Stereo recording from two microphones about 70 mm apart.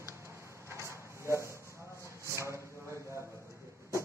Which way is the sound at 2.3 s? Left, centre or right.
Left.